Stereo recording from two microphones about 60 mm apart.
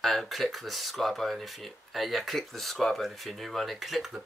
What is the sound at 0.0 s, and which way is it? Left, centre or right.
Speech, centre.